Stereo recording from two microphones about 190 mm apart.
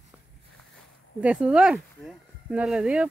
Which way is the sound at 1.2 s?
5° right (ahead or behind).